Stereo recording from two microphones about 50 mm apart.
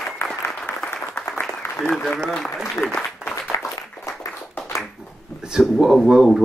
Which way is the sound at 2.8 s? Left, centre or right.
Left.